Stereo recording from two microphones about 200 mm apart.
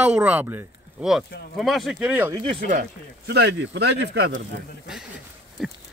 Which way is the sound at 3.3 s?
55° right (ahead or behind).